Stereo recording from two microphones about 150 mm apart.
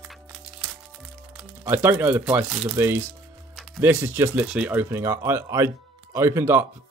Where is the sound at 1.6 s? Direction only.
15° right (ahead or behind).